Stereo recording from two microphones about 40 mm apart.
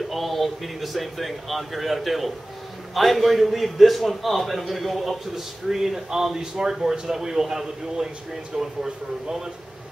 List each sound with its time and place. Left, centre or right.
0.1 s a man's voice: centre